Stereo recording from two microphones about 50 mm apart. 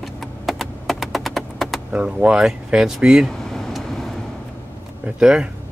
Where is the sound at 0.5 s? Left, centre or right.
Centre.